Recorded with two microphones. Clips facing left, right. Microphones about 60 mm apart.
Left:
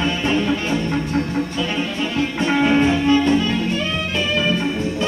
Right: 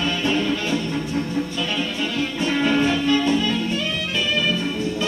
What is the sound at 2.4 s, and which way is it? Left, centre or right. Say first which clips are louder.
Music: left 3 dB; left.